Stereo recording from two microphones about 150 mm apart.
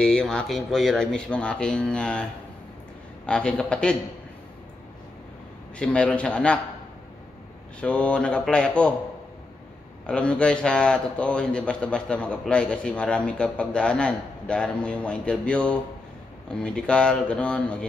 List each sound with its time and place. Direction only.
0.0 s speech: 5° left (ahead or behind)
3.3 s a man's voice: 5° left (ahead or behind)
5.8 s a man's voice: 5° left (ahead or behind)
7.8 s a man's voice: 10° left (ahead or behind)
10.0 s a man's voice: 5° left (ahead or behind)